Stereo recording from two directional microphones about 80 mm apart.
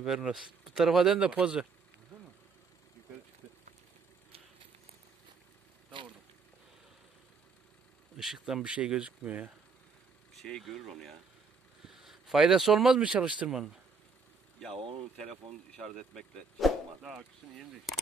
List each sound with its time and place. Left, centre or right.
0.0 s speech: centre
8.2 s speech: centre
10.4 s speech: centre
15.1 s speech: centre